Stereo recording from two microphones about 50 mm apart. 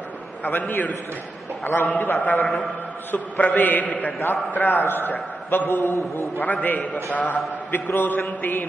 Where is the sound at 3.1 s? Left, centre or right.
Left.